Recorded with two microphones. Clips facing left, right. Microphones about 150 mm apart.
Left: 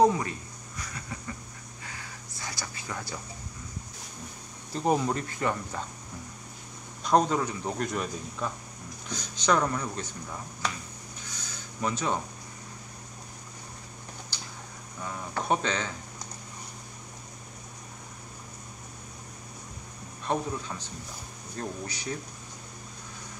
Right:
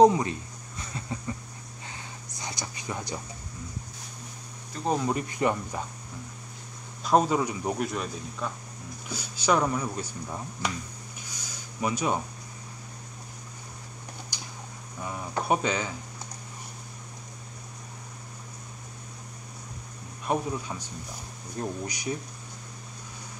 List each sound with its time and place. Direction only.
0.0 s a sound: 20° right (ahead or behind)
4.7 s speech: 30° left (ahead or behind)
5.1 s speech: 15° right (ahead or behind)
7.1 s speech: 5° right (ahead or behind)
7.9 s speech: centre (ahead or behind)
11.3 s a sound: 10° right (ahead or behind)
14.3 s a sound: 15° right (ahead or behind)
15.0 s speech: 10° right (ahead or behind)
20.2 s speech: 10° right (ahead or behind)